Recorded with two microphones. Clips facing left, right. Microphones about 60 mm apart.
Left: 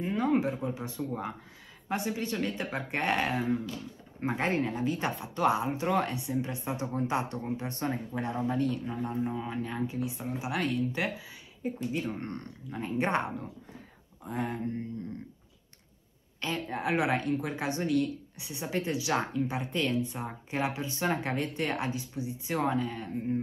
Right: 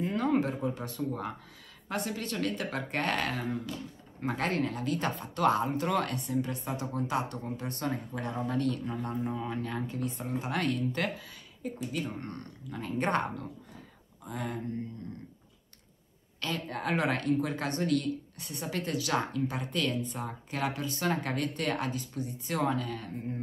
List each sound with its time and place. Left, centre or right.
0.0 s a sound: centre
0.7 s a woman's voice: centre
3.4 s a woman's voice: centre
4.2 s a woman's voice: left
12.6 s a woman's voice: centre
14.2 s speech: left
16.3 s a woman's voice: centre